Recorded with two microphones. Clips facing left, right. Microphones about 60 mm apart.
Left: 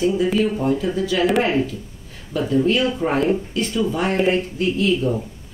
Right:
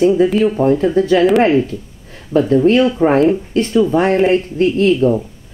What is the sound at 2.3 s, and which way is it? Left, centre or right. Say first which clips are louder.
Speech: right 8 dB; right.